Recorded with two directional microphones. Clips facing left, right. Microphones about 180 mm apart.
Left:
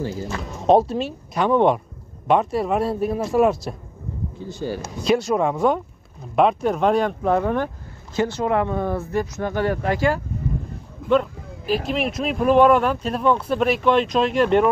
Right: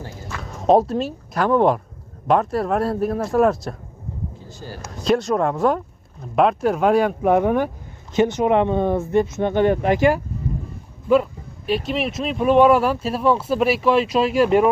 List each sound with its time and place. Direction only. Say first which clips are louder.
0.4 s speech: right 1 dB; centre (ahead or behind)
4.7 s speech: right 1 dB; centre (ahead or behind); by 10.2 s 20° right (ahead or behind)
11.1 s speech: right 2 dB; 5° right (ahead or behind)